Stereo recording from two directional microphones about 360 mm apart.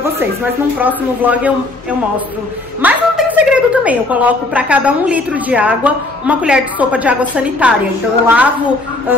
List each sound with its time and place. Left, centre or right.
0.0 s a woman's voice: centre
2.8 s a woman's voice: centre